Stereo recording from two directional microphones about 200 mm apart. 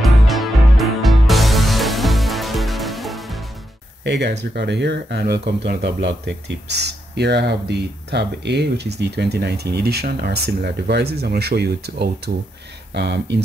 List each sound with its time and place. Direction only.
0.0 s music: centre (ahead or behind)
4.0 s speech: 55° right (ahead or behind)